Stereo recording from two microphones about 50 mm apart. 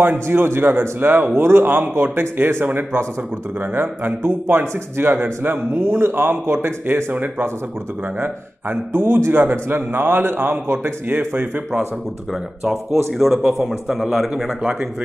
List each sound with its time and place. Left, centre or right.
0.0 s a man's voice: right
13.1 s a man's voice: centre
14.6 s speech: centre